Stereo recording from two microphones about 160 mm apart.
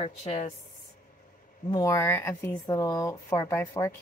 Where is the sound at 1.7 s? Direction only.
20° left (ahead or behind).